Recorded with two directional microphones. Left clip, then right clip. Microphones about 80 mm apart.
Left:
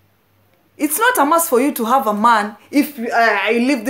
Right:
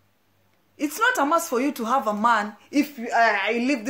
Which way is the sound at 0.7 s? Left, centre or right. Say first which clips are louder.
Left 7 dB; left.